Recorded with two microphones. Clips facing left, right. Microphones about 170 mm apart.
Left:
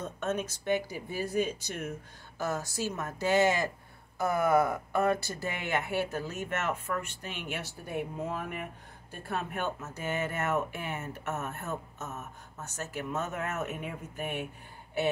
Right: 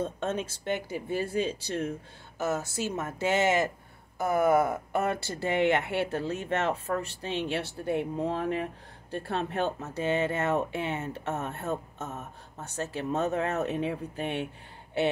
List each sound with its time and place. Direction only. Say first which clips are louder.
0.0 s speech: right 2 dB; 30° right (ahead or behind)